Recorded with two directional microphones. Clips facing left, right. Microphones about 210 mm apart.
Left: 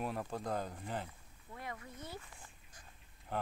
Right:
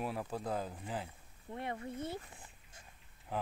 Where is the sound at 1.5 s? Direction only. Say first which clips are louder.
Right 7 dB; 25° right (ahead or behind).